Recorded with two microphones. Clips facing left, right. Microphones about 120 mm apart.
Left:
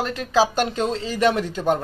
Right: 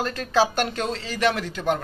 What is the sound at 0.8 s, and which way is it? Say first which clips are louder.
Speech: left 3 dB; 25° left (ahead or behind).